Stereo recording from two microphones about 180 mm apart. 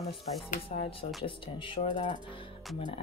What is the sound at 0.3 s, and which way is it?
Speech, 35° left (ahead or behind).